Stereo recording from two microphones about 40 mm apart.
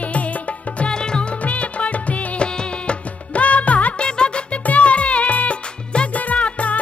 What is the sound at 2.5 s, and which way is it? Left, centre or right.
Music, left.